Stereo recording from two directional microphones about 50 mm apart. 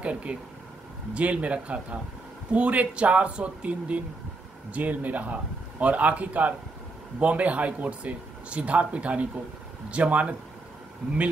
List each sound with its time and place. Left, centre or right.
0.0 s speech: right